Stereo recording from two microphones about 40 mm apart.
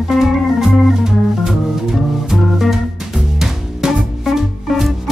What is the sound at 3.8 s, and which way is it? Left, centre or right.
Music, centre.